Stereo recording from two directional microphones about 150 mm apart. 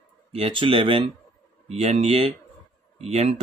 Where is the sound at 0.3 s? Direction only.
40° right (ahead or behind).